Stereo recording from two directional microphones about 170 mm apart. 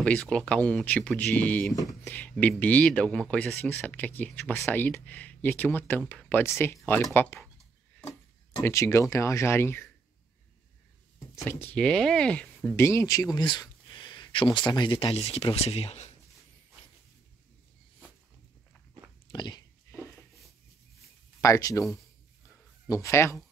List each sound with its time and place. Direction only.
0.0 s speech: 5° left (ahead or behind)
7.4 s a sound: 5° left (ahead or behind)
8.5 s speech: 15° left (ahead or behind)
11.3 s speech: 10° left (ahead or behind); by 16.1 s 35° left (ahead or behind)
19.2 s biting: 25° left (ahead or behind)
21.4 s speech: 20° left (ahead or behind)
22.8 s speech: 20° left (ahead or behind)